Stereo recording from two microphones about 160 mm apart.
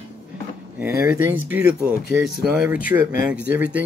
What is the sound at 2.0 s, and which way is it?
Speech, 85° left.